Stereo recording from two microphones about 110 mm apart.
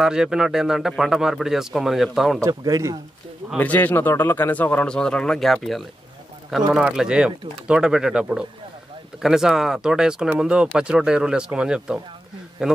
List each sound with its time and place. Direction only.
0.0 s speech: 5° right (ahead or behind)
2.4 s a man's voice: 30° right (ahead or behind)
3.5 s speech: 15° left (ahead or behind); by 12.7 s 5° right (ahead or behind)